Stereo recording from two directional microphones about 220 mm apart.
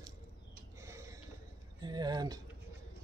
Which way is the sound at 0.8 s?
15° right (ahead or behind).